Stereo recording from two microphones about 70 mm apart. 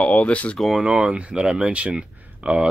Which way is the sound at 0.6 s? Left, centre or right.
Centre.